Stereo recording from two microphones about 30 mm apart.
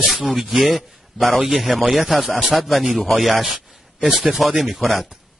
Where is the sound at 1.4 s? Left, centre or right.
Centre.